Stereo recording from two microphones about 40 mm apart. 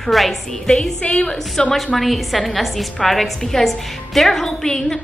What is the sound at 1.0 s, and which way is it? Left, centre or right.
Speech, left.